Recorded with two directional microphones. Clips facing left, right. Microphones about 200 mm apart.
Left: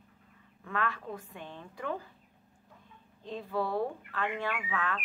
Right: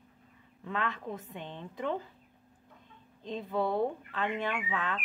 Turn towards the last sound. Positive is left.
turn(degrees=-20)  # may be behind; listen again after turning